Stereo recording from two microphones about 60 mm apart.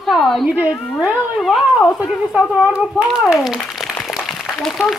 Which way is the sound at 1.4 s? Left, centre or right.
Centre.